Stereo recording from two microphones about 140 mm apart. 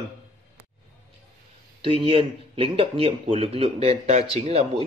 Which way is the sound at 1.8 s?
40° right (ahead or behind).